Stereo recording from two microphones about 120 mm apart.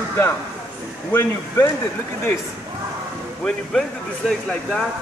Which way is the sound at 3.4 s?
5° left (ahead or behind).